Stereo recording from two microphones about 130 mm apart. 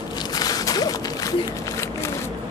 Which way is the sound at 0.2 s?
30° left (ahead or behind).